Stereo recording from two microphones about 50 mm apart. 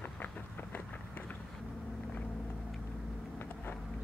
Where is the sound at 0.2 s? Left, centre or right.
Left.